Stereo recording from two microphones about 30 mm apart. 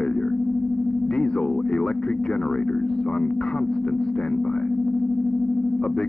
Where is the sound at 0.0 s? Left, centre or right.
Left.